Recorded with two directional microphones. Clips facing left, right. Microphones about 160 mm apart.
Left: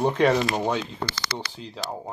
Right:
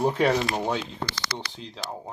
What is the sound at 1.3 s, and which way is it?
Speech, 5° left (ahead or behind).